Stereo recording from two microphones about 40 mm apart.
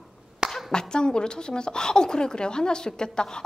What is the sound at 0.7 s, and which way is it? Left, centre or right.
Speech, left.